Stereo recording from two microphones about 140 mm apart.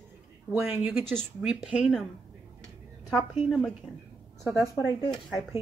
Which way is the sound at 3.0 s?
Centre (ahead or behind).